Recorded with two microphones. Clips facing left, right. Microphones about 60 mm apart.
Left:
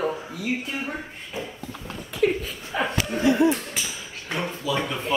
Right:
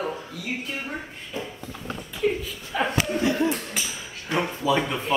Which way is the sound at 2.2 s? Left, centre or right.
Left.